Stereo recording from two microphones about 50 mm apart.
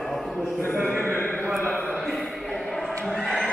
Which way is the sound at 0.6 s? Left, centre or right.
Left.